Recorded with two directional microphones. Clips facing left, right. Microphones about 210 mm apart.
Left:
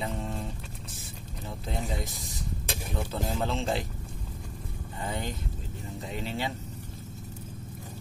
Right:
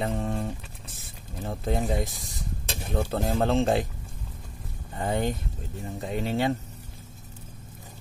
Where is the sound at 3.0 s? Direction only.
50° right (ahead or behind).